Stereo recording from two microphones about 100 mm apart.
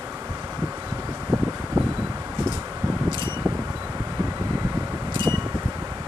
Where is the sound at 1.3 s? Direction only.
20° right (ahead or behind).